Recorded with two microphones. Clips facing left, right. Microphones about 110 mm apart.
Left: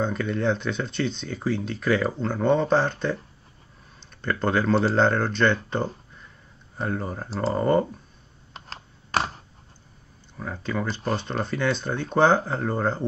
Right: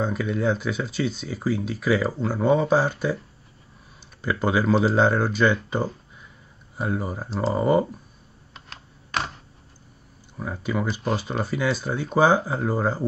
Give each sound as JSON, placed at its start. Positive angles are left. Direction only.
{"t": 0.0, "sound": "speech", "side_deg": -5}
{"t": 4.2, "sound": "speech", "side_deg": -5}
{"t": 8.5, "sound": "computer keyboard", "side_deg": 35}
{"t": 10.3, "sound": "speech", "side_deg": -10}